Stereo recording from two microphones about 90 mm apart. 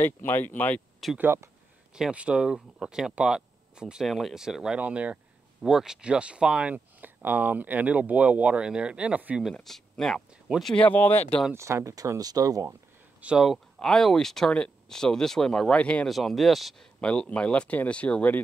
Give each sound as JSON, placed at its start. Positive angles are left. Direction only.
{"t": 0.0, "sound": "speech", "side_deg": 25}
{"t": 1.1, "sound": "speech", "side_deg": -25}
{"t": 2.0, "sound": "speech", "side_deg": -10}
{"t": 5.6, "sound": "speech", "side_deg": -5}
{"t": 9.4, "sound": "speech", "side_deg": 0}
{"t": 10.8, "sound": "speech", "side_deg": 20}
{"t": 11.5, "sound": "speech", "side_deg": -30}
{"t": 13.2, "sound": "speech", "side_deg": -10}
{"t": 13.5, "sound": "speech", "side_deg": 5}
{"t": 16.1, "sound": "speech", "side_deg": 0}
{"t": 17.0, "sound": "speech", "side_deg": 10}